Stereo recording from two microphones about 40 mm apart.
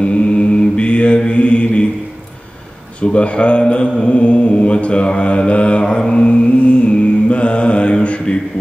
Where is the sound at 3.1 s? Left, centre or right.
Left.